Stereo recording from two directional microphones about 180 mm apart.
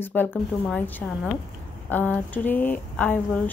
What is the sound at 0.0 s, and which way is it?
Speech, 10° left (ahead or behind).